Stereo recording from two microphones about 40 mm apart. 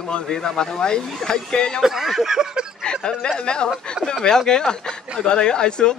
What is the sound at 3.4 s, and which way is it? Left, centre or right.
Speech, left.